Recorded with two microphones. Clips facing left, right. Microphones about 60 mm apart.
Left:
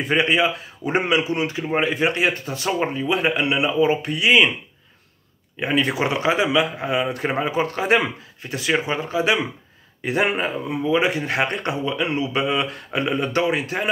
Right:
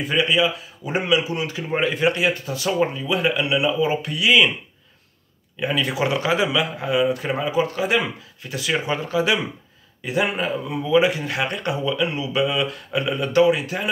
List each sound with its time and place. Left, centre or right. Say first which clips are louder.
0.0 s speech: left 1 dB; left
5.6 s speech: left 1 dB; left
10.0 s speech: left 2 dB; left
10.3 s speech: left 1 dB; left